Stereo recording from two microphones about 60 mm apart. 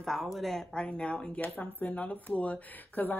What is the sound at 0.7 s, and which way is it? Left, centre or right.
Speech, centre.